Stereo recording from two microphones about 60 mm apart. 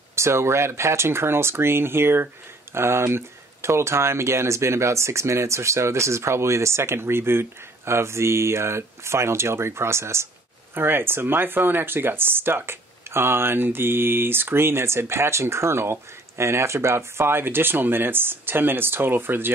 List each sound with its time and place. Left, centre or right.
0.1 s speech: right